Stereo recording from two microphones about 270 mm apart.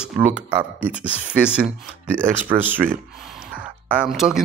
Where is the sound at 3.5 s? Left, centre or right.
Centre.